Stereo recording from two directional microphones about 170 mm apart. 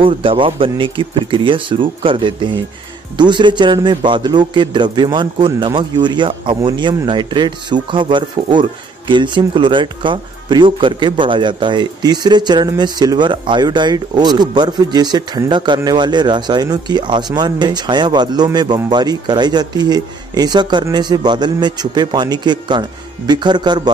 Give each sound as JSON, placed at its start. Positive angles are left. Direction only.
{"t": 0.0, "sound": "a man's voice", "side_deg": -30}